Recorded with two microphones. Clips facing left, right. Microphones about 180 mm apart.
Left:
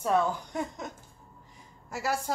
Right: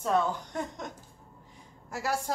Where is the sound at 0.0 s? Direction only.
10° left (ahead or behind).